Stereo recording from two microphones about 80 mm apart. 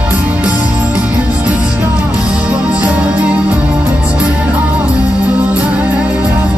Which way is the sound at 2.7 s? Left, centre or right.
Centre.